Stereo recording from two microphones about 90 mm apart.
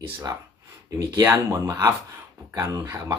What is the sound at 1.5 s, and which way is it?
Speech, 35° right (ahead or behind).